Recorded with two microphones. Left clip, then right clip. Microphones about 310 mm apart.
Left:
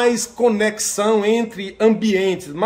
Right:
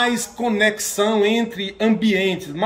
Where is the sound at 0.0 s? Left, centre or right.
Centre.